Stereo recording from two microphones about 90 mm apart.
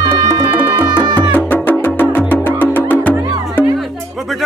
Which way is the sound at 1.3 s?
20° left (ahead or behind).